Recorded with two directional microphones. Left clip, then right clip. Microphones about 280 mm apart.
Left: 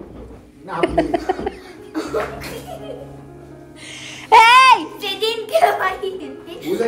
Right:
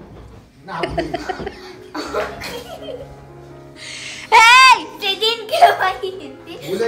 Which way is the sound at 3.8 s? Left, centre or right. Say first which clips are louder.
Left 2 dB; centre.